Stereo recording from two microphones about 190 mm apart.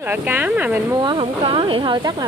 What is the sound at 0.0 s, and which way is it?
Speech, 10° right (ahead or behind).